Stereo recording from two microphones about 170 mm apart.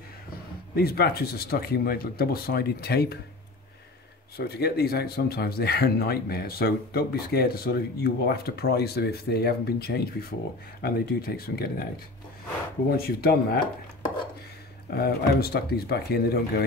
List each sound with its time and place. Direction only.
0.7 s speech: 65° left (ahead or behind)
4.4 s speech: 65° left (ahead or behind)
12.9 s speech: 65° left (ahead or behind)
14.9 s speech: 65° left (ahead or behind)